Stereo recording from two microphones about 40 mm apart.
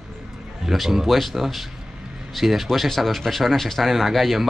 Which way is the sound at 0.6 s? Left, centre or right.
Centre.